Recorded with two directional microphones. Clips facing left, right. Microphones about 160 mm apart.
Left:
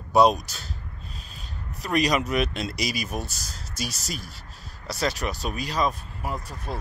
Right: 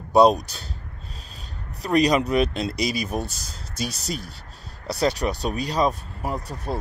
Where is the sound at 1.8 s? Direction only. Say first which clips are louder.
Right 4 dB; 30° right (ahead or behind).